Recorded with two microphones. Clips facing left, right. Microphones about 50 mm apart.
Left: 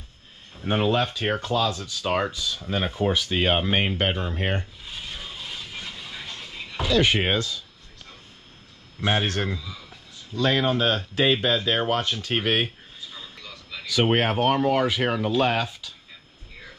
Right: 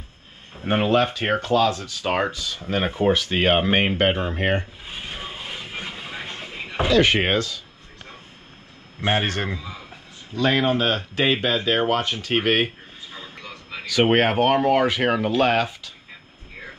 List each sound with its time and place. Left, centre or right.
0.6 s speech: right
4.8 s a sound: right
7.0 s speech: right
9.0 s speech: right
12.6 s a sound: right
14.6 s speech: right
15.3 s speech: right